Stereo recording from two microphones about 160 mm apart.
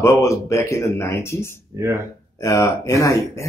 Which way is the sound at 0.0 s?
20° left (ahead or behind).